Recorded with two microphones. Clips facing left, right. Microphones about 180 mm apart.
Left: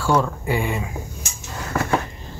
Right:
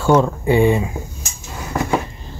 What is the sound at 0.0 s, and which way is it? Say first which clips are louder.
Speech: right 6 dB; 25° right (ahead or behind).